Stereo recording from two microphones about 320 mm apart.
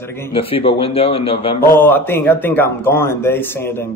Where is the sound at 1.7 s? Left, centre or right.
Centre.